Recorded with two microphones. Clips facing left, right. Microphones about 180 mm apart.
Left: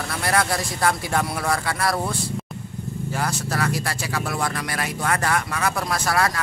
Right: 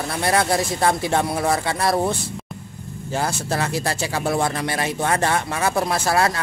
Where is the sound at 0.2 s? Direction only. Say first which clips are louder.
Right 3 dB; 25° right (ahead or behind).